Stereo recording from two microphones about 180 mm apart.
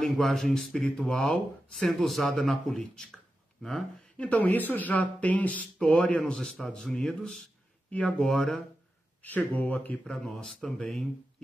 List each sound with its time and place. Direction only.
0.0 s speech: centre (ahead or behind)